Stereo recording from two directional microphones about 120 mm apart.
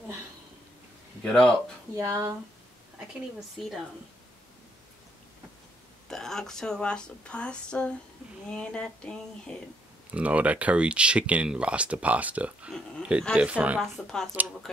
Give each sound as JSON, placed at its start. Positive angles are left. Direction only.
{"t": 1.2, "sound": "speech", "side_deg": 5}
{"t": 2.0, "sound": "speech", "side_deg": -25}
{"t": 3.5, "sound": "speech", "side_deg": 0}
{"t": 6.0, "sound": "a woman's voice", "side_deg": 5}
{"t": 10.1, "sound": "speech", "side_deg": -10}
{"t": 13.7, "sound": "speech", "side_deg": 5}